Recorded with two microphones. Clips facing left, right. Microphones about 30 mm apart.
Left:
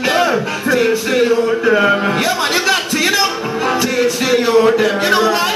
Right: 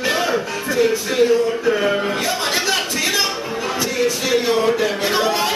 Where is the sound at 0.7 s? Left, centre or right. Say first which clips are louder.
Left 3 dB; left.